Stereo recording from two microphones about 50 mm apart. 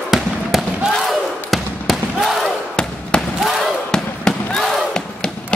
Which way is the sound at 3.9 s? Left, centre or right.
Centre.